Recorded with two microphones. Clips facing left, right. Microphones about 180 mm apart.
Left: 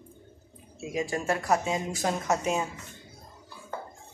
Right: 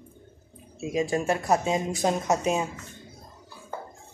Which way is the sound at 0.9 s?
20° right (ahead or behind).